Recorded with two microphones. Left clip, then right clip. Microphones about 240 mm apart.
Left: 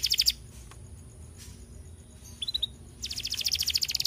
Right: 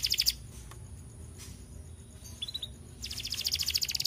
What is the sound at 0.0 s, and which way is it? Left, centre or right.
Bird, left.